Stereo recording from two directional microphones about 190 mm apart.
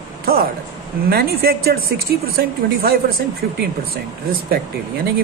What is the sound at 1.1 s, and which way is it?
Speech, 55° right (ahead or behind).